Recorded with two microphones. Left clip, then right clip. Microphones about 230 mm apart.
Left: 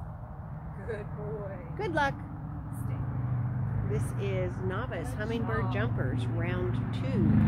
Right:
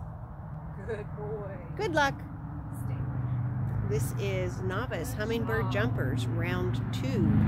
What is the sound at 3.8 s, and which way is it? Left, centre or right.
Speech, right.